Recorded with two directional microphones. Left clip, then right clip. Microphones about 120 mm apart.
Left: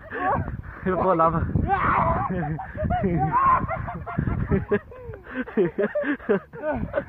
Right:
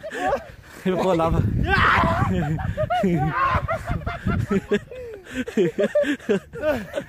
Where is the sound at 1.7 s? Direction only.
60° right (ahead or behind); by 4.8 s 45° right (ahead or behind).